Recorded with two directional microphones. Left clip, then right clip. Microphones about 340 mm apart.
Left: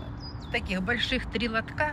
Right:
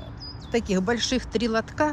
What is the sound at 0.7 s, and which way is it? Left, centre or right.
Speech, centre.